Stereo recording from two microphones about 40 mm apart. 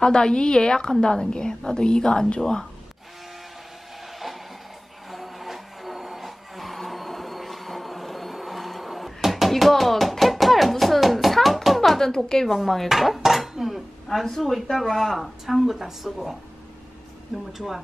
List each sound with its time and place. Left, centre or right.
0.0 s a woman's voice: centre
5.1 s a sound: centre
12.4 s speech: centre
17.5 s speech: centre